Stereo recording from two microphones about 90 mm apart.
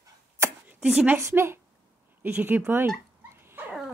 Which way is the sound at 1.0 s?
25° right (ahead or behind).